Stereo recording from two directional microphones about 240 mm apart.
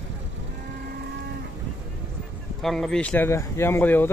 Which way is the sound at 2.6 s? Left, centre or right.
Centre.